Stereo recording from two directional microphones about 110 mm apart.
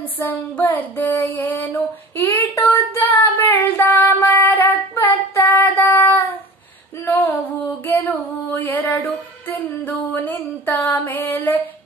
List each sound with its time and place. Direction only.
0.2 s music: 15° left (ahead or behind)
2.2 s child singing: 20° left (ahead or behind)
7.8 s female singing: 15° left (ahead or behind)